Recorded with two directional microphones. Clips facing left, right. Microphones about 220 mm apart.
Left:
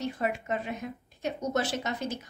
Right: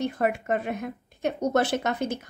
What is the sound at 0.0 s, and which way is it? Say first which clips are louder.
A woman's voice: right 5 dB; 55° right (ahead or behind).